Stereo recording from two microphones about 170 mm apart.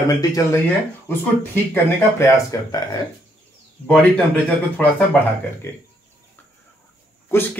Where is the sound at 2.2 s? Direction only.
20° left (ahead or behind).